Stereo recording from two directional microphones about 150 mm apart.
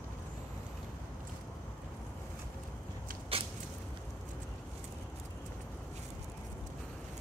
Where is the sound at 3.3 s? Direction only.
40° right (ahead or behind).